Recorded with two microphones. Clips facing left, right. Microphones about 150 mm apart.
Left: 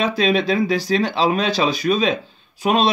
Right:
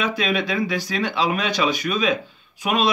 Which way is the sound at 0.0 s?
30° left (ahead or behind).